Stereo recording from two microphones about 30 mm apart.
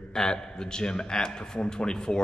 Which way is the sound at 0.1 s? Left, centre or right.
Left.